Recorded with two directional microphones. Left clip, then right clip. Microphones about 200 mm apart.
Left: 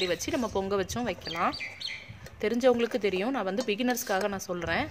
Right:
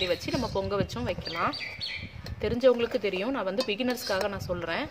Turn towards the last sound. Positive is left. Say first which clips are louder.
# left 1 dB
turn(degrees=35)  # may be behind; listen again after turning